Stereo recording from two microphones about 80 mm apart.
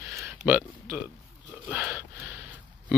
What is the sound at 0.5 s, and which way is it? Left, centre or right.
Speech, right.